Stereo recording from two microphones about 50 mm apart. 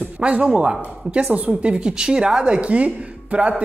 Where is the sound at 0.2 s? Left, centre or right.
Right.